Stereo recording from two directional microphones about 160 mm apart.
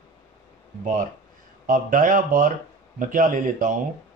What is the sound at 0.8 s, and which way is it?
Speech, 55° right (ahead or behind).